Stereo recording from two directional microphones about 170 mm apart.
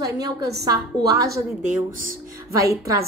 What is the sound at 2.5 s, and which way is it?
Speech, 20° right (ahead or behind).